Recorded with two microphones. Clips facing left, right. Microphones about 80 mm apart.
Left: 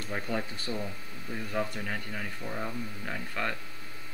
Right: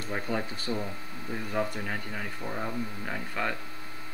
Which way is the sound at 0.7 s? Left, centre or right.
Centre.